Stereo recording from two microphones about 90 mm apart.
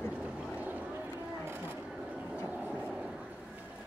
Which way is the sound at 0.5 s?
15° right (ahead or behind).